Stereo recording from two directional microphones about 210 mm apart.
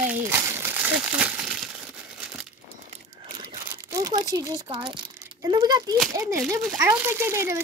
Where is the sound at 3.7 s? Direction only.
15° right (ahead or behind).